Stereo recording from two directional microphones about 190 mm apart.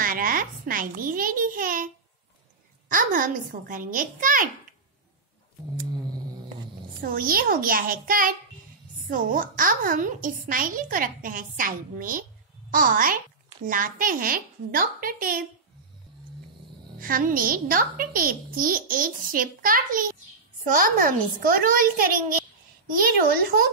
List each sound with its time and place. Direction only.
0.0 s a child's voice: 50° right (ahead or behind)
2.9 s a child's voice: 45° right (ahead or behind)
7.0 s a child's voice: 50° right (ahead or behind)
17.0 s a child's voice: 50° right (ahead or behind)